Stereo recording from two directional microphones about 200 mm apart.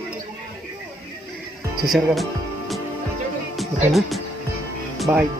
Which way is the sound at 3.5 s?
Centre (ahead or behind).